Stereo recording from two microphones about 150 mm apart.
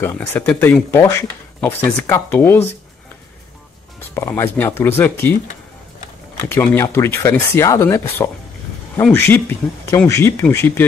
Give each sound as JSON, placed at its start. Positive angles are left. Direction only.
{"t": 0.0, "sound": "speech", "side_deg": 15}
{"t": 4.1, "sound": "speech", "side_deg": 15}